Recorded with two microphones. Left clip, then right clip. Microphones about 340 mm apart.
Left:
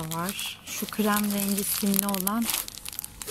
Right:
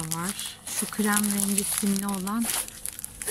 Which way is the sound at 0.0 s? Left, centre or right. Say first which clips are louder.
Left 2 dB; centre.